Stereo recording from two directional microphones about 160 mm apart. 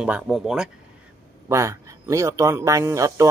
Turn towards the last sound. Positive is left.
turn(degrees=-20)  # may be behind; listen again after turning